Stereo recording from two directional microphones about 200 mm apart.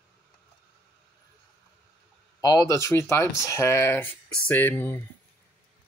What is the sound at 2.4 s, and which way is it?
Speech, 20° left (ahead or behind).